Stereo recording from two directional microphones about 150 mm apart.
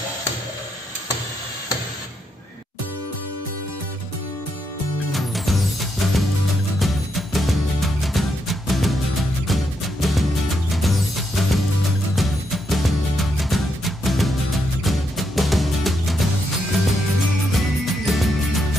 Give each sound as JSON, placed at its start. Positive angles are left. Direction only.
{"t": 5.1, "sound": "music", "side_deg": 0}
{"t": 17.6, "sound": "music", "side_deg": 0}